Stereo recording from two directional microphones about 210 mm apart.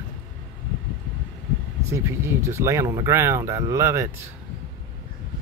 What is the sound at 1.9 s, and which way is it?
Speech, 15° right (ahead or behind).